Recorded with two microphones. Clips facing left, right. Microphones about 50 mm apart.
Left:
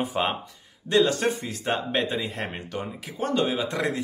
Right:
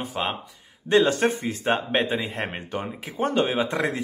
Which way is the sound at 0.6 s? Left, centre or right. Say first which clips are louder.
Right 2 dB; right.